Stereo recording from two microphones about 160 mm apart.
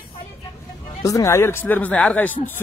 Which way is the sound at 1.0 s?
20° left (ahead or behind).